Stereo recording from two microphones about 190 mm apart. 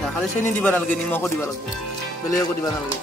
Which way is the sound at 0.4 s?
5° left (ahead or behind).